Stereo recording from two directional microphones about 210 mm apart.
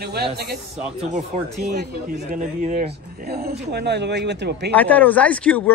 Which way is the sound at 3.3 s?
45° right (ahead or behind).